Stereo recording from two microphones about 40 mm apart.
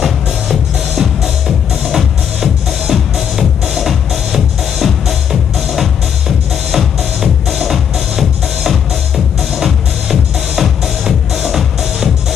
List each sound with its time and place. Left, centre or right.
0.0 s music: centre